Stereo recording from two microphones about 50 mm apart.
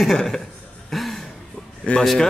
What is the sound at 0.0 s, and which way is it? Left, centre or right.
Speech, centre.